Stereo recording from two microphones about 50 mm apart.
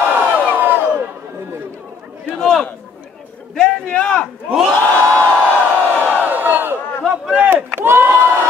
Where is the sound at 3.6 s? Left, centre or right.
Centre.